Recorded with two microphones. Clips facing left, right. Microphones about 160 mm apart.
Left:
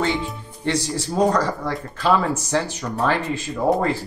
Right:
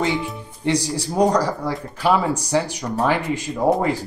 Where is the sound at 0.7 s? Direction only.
15° right (ahead or behind).